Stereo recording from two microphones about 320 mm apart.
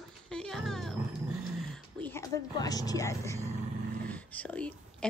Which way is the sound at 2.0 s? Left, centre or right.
Centre.